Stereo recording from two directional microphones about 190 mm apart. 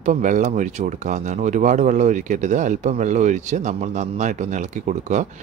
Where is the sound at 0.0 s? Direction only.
40° right (ahead or behind).